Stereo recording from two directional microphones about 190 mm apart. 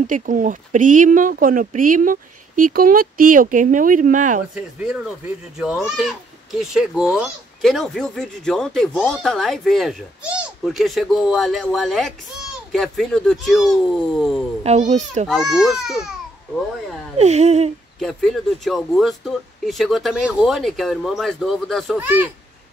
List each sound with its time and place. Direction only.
0.0 s speech: 45° right (ahead or behind)
4.6 s speech: 5° right (ahead or behind)
14.6 s a child's voice: 40° right (ahead or behind)
15.2 s speech: centre (ahead or behind)
17.2 s a child's voice: 35° right (ahead or behind)
17.9 s speech: centre (ahead or behind)
21.9 s a child's voice: 10° right (ahead or behind)